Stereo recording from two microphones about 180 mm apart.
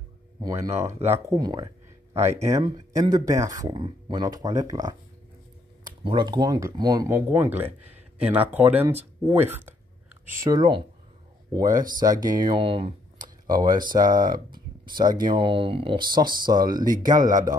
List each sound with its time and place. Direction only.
0.4 s speech: 20° right (ahead or behind)
10.4 s speech: 20° right (ahead or behind)
11.8 s speech: 20° right (ahead or behind)
14.3 s a sound: 55° right (ahead or behind)
15.0 s speech: 25° right (ahead or behind)